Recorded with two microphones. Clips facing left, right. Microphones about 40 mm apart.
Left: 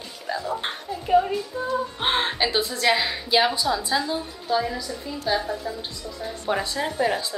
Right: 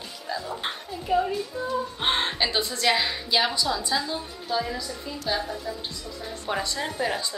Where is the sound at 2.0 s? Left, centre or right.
Centre.